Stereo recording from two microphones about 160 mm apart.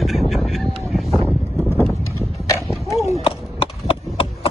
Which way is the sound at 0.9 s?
Centre (ahead or behind).